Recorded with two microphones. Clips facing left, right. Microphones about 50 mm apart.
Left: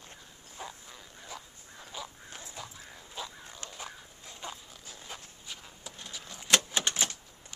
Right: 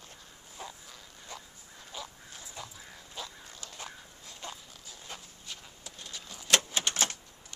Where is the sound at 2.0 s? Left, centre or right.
Centre.